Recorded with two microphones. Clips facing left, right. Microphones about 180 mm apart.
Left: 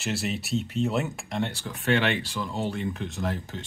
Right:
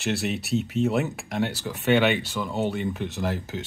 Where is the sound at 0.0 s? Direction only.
Centre (ahead or behind).